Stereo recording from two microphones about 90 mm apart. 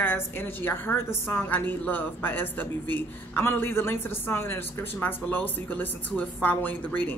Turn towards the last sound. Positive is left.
turn(degrees=20)  # may be behind; listen again after turning